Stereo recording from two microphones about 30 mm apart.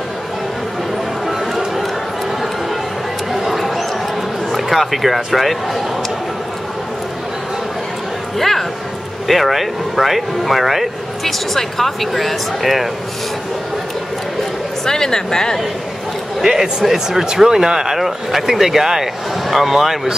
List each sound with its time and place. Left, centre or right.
1.2 s a sound: centre
3.3 s a sound: centre
4.5 s speech: centre
8.4 s a sound: centre
9.3 s speech: centre
11.2 s speech: centre
14.9 s a woman's voice: left
16.3 s a man's voice: right
17.9 s speech: centre